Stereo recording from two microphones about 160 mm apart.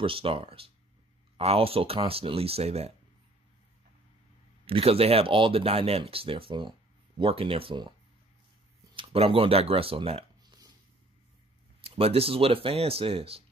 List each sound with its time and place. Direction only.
0.0 s speech: 35° right (ahead or behind)
4.6 s speech: 35° right (ahead or behind)
8.9 s speech: 35° right (ahead or behind)
11.8 s speech: 35° right (ahead or behind)